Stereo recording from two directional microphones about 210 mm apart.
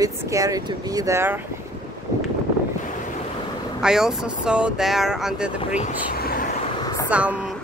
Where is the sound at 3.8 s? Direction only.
5° right (ahead or behind).